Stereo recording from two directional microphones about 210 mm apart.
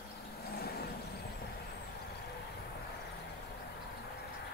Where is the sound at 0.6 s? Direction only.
45° left (ahead or behind).